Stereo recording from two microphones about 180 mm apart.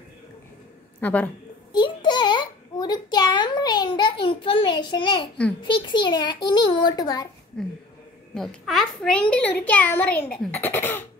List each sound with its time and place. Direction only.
1.0 s a child's voice: 10° left (ahead or behind)
1.7 s a sound: 25° left (ahead or behind)
5.6 s a child's voice: 25° left (ahead or behind)
7.5 s a child's voice: 5° left (ahead or behind)